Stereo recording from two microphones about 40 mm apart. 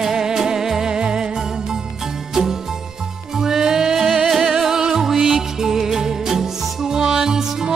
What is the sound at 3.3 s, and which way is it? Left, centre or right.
Music, centre.